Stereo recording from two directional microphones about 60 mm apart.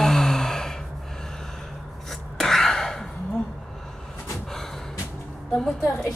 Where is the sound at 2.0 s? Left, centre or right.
Centre.